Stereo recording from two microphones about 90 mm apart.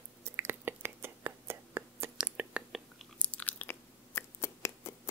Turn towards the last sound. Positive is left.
turn(degrees=30)  # may be behind; listen again after turning